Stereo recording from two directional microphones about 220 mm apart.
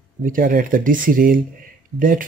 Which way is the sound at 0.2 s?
40° right (ahead or behind).